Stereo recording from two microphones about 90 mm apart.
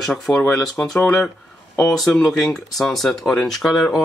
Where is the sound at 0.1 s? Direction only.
5° left (ahead or behind).